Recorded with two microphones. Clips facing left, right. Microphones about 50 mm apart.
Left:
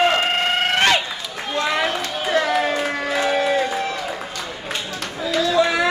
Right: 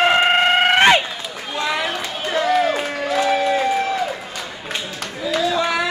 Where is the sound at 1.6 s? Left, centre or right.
Centre.